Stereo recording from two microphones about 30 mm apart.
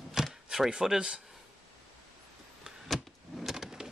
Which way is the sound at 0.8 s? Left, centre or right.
Right.